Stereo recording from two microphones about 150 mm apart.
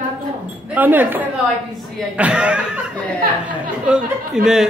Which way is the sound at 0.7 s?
10° right (ahead or behind).